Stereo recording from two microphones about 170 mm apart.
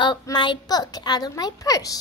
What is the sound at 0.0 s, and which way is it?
A child's voice, 25° left (ahead or behind).